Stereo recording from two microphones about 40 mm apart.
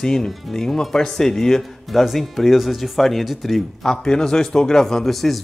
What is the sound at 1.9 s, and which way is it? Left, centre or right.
Speech, centre.